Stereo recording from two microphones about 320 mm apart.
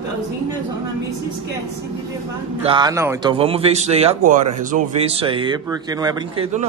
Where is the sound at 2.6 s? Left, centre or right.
Centre.